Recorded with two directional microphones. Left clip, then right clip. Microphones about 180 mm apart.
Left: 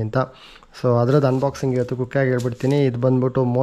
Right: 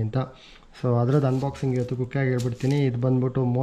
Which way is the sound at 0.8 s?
40° right (ahead or behind).